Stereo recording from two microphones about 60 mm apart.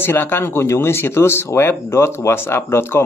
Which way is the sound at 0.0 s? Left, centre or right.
Left.